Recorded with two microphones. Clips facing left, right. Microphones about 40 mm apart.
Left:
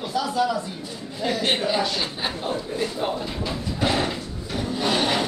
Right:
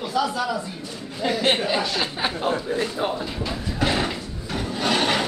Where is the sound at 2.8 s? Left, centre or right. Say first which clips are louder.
Right 1 dB; centre.